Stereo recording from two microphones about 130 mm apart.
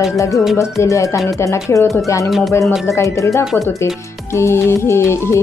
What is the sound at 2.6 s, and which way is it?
Speech, centre (ahead or behind).